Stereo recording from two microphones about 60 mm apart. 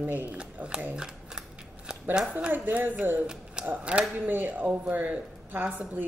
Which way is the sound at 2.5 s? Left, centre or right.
Right.